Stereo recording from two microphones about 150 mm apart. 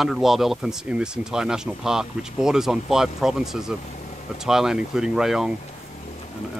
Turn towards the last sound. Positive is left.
turn(degrees=-5)  # may be behind; listen again after turning